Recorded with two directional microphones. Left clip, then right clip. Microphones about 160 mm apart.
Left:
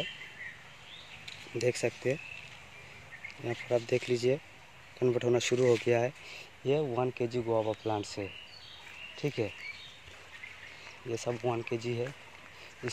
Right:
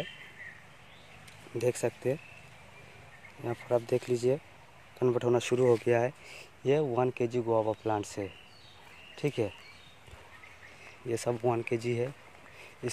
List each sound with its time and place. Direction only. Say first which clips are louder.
1.6 s speech: right 1 dB; 5° right (ahead or behind)
3.4 s speech: right 1 dB; 5° right (ahead or behind)
11.1 s speech: right 3 dB; 20° right (ahead or behind)